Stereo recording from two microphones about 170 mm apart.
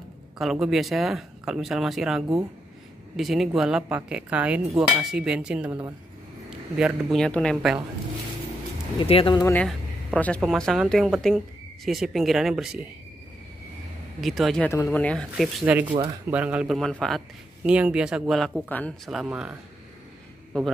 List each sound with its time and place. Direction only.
0.4 s cutlery: centre (ahead or behind)
6.8 s cutlery: centre (ahead or behind)
9.0 s speech: 30° left (ahead or behind)
9.4 s speech: 15° left (ahead or behind)
10.4 s cutlery: centre (ahead or behind)
14.2 s cutlery: centre (ahead or behind)
14.7 s cutlery: 15° left (ahead or behind)
19.0 s cutlery: 5° right (ahead or behind)